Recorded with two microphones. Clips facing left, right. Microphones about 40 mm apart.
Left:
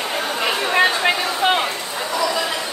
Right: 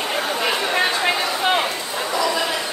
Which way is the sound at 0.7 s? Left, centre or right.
Centre.